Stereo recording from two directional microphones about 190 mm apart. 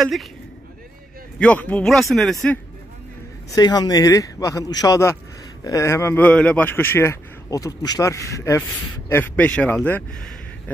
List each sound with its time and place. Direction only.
0.0 s speech: centre (ahead or behind)
1.4 s speech: 5° left (ahead or behind)
3.5 s a man's voice: 20° left (ahead or behind)